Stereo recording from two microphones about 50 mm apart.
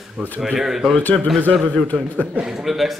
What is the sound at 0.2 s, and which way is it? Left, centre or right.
Speech, centre.